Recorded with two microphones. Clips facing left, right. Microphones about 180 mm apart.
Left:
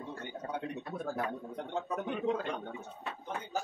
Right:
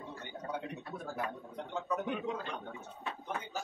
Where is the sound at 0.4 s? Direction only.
Centre (ahead or behind).